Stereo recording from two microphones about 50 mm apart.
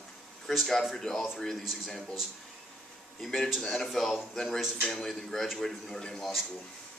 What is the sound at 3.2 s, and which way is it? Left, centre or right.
A man's voice, centre.